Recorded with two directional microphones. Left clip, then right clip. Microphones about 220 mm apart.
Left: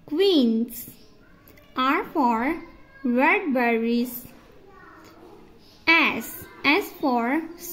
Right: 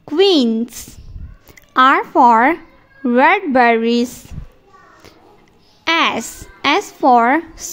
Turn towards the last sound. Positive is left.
turn(degrees=-35)  # may be behind; listen again after turning